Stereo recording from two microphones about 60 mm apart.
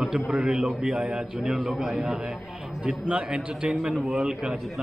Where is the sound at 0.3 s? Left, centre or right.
Centre.